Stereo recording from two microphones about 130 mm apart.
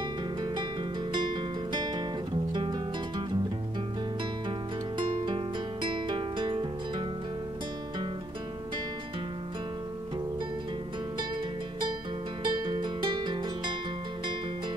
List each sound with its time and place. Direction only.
1.1 s music: 35° right (ahead or behind)
4.9 s music: 35° right (ahead or behind)
12.4 s music: 35° right (ahead or behind)